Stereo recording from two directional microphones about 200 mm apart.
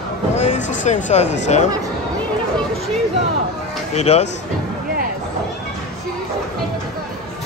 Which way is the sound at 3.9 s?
35° left (ahead or behind).